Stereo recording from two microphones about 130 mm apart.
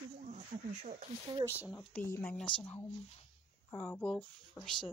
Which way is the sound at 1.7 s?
15° left (ahead or behind).